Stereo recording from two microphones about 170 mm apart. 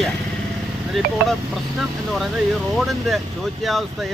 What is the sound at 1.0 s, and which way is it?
Speech, centre (ahead or behind).